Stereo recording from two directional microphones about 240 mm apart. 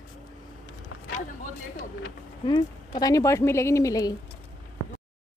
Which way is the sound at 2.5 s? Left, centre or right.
Centre.